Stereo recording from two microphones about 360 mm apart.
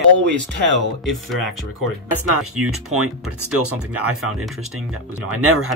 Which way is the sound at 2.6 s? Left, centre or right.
Right.